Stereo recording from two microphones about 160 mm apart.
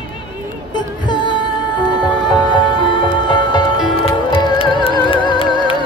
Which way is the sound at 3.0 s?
30° left (ahead or behind).